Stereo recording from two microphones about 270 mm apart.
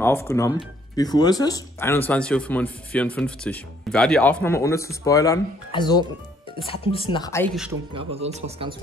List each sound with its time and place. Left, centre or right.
0.0 s speech: centre
7.9 s speech: right